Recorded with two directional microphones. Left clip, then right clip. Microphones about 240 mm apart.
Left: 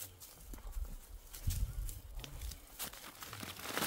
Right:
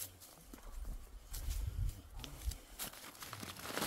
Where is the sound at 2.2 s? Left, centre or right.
Centre.